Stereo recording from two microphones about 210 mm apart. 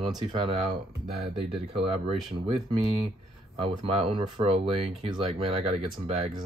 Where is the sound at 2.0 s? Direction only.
30° right (ahead or behind).